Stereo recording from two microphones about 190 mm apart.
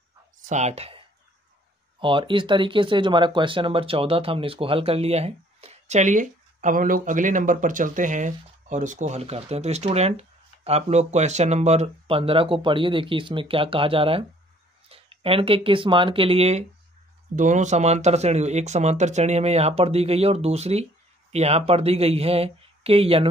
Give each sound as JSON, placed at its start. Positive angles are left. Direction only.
{"t": 0.5, "sound": "speech", "side_deg": -35}